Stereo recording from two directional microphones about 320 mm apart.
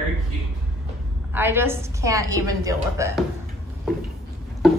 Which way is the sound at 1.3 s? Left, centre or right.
Centre.